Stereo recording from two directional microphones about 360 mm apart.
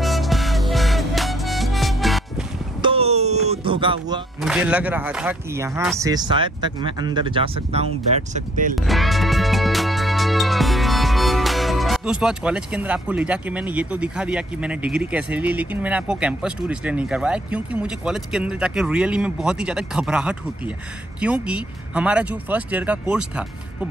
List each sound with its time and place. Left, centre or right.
0.0 s music: centre
2.8 s a sound: centre
4.4 s speech: centre
8.7 s music: centre
21.2 s speech: centre